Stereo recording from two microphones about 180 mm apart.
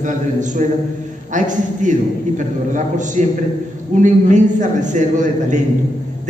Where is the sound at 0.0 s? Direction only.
45° right (ahead or behind).